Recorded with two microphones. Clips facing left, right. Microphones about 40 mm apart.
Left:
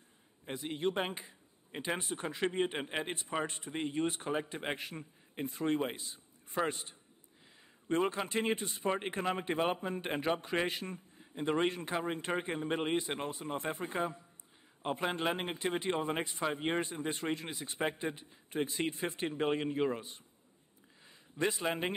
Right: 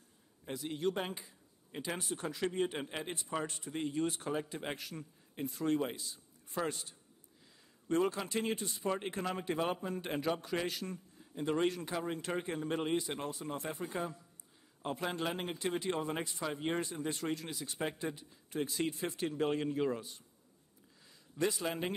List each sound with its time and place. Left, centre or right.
0.5 s speech: left
21.4 s a man's voice: left